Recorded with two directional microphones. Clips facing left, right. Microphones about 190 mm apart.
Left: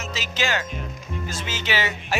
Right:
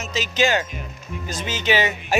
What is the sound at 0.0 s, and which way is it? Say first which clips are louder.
Speech: right 6 dB; 20° right (ahead or behind).